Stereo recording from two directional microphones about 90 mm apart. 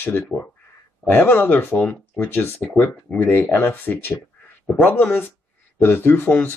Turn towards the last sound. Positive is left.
turn(degrees=20)  # may be behind; listen again after turning